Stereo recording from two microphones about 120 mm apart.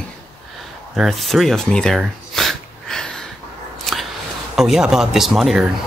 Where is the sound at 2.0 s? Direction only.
Centre (ahead or behind).